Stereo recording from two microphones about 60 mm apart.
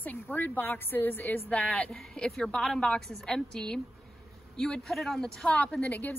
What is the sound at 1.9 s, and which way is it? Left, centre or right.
A woman's voice, centre.